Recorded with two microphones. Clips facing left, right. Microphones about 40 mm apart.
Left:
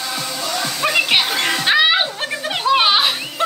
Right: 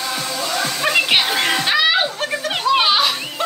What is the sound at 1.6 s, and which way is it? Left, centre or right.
Chuckle, centre.